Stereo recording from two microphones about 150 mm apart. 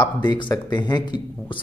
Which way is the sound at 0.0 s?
30° left (ahead or behind).